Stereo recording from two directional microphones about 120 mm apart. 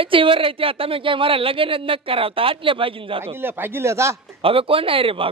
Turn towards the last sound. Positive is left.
turn(degrees=-50)  # may be behind; listen again after turning